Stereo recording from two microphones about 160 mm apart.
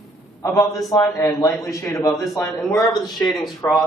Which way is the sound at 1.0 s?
15° left (ahead or behind).